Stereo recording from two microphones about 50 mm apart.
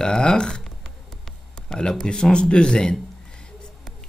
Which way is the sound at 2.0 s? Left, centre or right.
Centre.